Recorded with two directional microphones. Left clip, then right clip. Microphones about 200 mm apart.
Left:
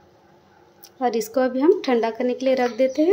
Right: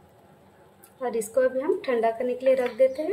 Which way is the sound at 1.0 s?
45° left (ahead or behind).